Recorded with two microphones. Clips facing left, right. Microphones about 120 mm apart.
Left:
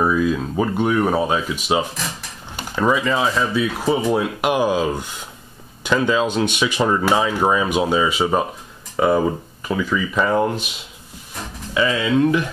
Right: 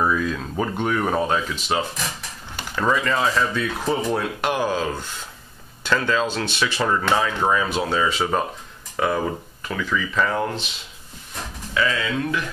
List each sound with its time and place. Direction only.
0.0 s speech: 10° left (ahead or behind)
11.7 s speech: 20° left (ahead or behind)